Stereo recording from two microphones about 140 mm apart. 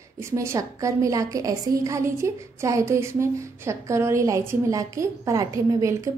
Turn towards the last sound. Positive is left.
turn(degrees=-20)  # may be behind; listen again after turning